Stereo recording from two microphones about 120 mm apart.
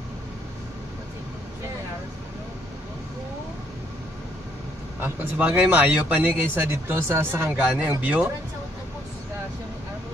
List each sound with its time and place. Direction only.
5.0 s speech: 15° right (ahead or behind)